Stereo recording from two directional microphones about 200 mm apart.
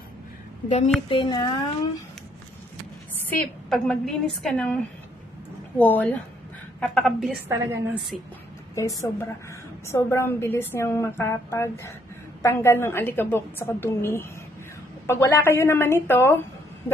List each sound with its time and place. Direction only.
0.7 s a woman's voice: 35° left (ahead or behind)
3.3 s a woman's voice: 5° left (ahead or behind)
5.8 s a woman's voice: 10° left (ahead or behind)
7.4 s a woman's voice: 15° right (ahead or behind)
9.8 s a woman's voice: 15° left (ahead or behind)